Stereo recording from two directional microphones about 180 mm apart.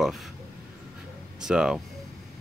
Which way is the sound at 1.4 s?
5° right (ahead or behind).